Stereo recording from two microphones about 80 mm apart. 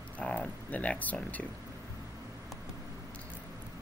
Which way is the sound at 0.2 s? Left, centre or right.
Centre.